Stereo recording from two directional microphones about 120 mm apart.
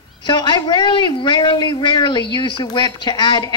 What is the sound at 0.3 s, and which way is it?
Speech, 40° left (ahead or behind).